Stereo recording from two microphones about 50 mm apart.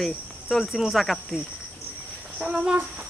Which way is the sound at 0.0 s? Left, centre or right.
Centre.